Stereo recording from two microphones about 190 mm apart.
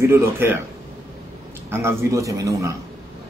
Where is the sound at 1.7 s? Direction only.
15° right (ahead or behind).